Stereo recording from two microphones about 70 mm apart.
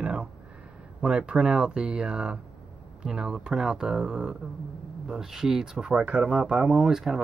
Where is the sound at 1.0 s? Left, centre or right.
Centre.